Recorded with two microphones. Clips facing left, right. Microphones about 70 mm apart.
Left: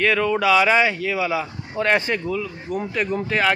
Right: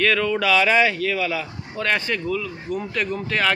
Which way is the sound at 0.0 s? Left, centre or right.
Centre.